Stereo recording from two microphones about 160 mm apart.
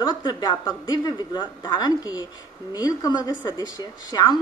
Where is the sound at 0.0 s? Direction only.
25° left (ahead or behind).